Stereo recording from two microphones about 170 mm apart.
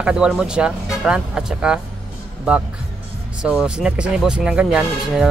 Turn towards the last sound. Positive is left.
turn(degrees=-5)  # may be behind; listen again after turning